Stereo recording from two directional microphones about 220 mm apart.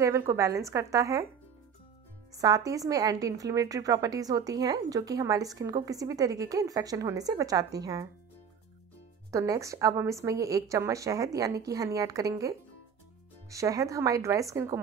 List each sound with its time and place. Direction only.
0.0 s a woman's voice: 10° right (ahead or behind)
2.3 s a woman's voice: 15° right (ahead or behind)
9.3 s a woman's voice: 15° right (ahead or behind)